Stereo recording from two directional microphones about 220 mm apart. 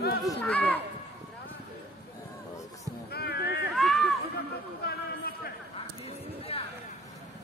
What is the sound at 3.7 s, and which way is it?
Run, centre (ahead or behind).